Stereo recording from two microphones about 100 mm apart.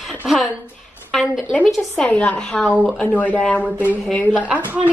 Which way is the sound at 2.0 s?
15° left (ahead or behind).